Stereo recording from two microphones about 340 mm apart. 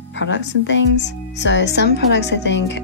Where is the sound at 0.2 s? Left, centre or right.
Left.